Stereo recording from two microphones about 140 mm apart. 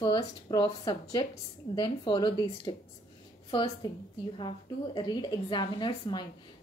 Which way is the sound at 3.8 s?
30° left (ahead or behind).